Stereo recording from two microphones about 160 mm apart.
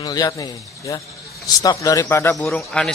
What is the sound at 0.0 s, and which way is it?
Speech, 25° left (ahead or behind).